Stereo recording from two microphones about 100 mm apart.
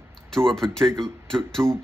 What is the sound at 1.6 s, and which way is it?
Speech, 25° right (ahead or behind).